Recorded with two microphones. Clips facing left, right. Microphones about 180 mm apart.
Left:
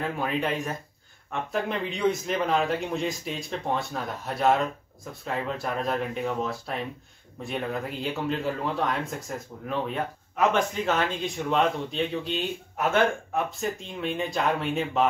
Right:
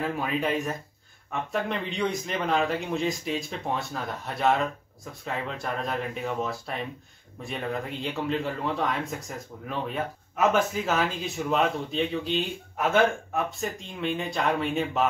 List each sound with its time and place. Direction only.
0.0 s speech: centre (ahead or behind)